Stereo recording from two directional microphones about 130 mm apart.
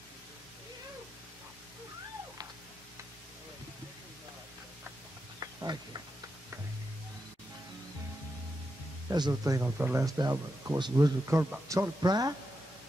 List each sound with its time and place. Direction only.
5.4 s a sound: 30° right (ahead or behind)
9.1 s a man's voice: 30° right (ahead or behind)
9.6 s speech: 15° right (ahead or behind)
10.0 s a man's voice: 30° right (ahead or behind)
12.0 s speech: 30° right (ahead or behind)